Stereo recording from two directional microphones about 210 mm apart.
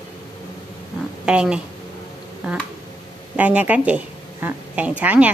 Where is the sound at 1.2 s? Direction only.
5° right (ahead or behind).